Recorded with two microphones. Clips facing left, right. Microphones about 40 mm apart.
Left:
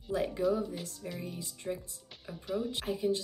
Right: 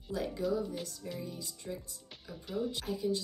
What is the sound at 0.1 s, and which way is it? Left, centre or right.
Speech, left.